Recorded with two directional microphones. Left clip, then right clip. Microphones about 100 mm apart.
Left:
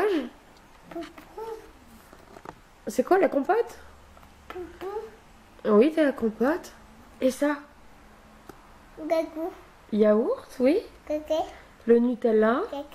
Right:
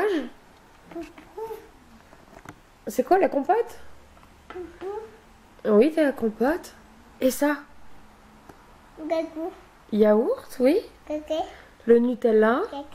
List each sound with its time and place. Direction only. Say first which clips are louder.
0.0 s a sound: right 1 dB; centre (ahead or behind)
2.8 s speech: right 1 dB; 5° right (ahead or behind)
4.5 s a sound: even; 20° left (ahead or behind)
5.6 s a woman's voice: right 1 dB; 15° right (ahead or behind)
7.2 s speech: right 2 dB; 30° right (ahead or behind)
9.0 s a woman's voice: left 1 dB; 10° left (ahead or behind)
9.8 s speech: right 2 dB; 30° right (ahead or behind)
11.1 s a woman's voice: left 1 dB; 10° left (ahead or behind)
11.8 s speech: right 2 dB; 25° right (ahead or behind)